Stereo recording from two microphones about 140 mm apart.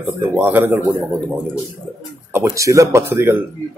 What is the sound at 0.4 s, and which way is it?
Speech, 15° right (ahead or behind).